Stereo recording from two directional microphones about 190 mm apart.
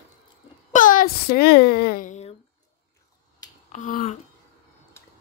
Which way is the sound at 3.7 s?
40° left (ahead or behind).